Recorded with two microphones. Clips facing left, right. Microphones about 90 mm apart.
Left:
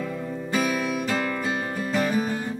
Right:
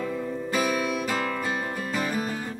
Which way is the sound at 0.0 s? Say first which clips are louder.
Right 1 dB; centre (ahead or behind).